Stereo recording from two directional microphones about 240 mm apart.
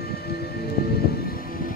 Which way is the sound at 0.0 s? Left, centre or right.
Left.